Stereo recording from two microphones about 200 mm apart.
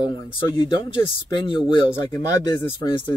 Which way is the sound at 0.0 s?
25° left (ahead or behind).